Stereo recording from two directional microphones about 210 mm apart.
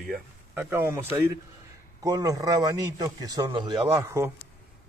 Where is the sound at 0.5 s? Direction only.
10° right (ahead or behind).